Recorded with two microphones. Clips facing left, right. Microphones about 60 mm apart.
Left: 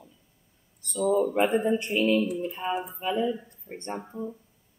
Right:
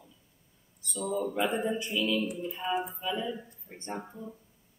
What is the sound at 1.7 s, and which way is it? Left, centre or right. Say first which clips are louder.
A woman's voice: left 6 dB; left.